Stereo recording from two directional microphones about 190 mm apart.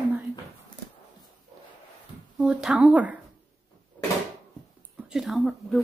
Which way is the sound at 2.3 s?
Centre (ahead or behind).